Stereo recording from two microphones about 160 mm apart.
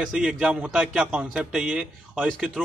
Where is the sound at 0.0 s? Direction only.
5° right (ahead or behind).